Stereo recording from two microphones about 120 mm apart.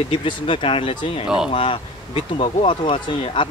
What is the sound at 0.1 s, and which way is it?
A man's voice, 45° left (ahead or behind).